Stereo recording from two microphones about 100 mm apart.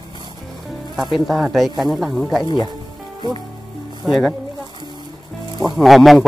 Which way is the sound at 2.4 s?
45° left (ahead or behind).